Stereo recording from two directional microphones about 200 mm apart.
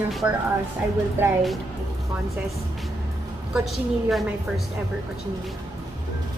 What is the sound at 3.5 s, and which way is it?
A woman's voice, centre (ahead or behind).